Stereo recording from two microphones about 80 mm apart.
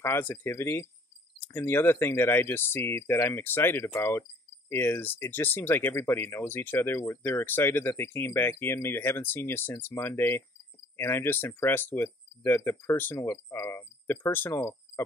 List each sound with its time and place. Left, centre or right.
0.0 s speech: left